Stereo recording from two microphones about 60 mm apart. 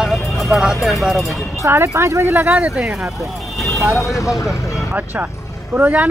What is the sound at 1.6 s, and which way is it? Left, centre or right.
Speech, right.